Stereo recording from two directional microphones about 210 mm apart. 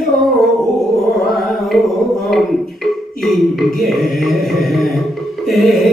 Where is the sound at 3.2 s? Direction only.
Centre (ahead or behind).